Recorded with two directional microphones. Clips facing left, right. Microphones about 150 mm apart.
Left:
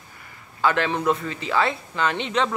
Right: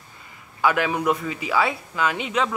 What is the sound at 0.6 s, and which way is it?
Speech, 10° right (ahead or behind).